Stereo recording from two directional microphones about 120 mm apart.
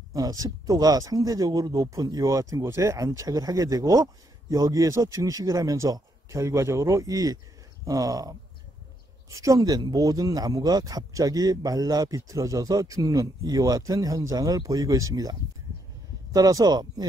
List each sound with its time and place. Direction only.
0.1 s speech: 30° right (ahead or behind)
16.3 s speech: 30° right (ahead or behind)